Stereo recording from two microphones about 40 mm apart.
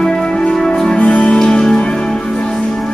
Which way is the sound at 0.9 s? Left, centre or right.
Left.